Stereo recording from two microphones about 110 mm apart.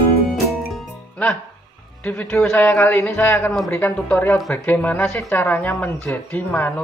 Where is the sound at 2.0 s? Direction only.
10° left (ahead or behind).